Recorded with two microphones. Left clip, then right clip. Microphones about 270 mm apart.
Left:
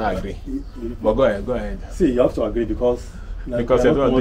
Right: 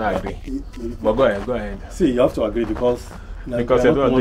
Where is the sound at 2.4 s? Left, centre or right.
Right.